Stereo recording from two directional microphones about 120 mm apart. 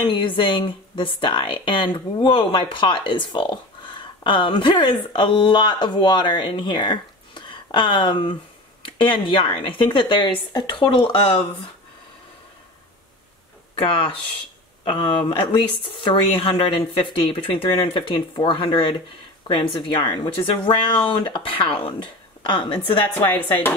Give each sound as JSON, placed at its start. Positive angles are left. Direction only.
{"t": 0.0, "sound": "speech", "side_deg": 45}
{"t": 13.7, "sound": "a woman's voice", "side_deg": 50}